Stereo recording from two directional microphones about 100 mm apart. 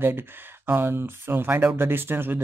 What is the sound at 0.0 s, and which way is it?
Speech, 20° right (ahead or behind).